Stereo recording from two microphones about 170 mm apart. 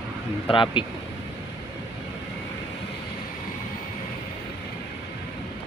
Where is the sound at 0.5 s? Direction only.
30° left (ahead or behind).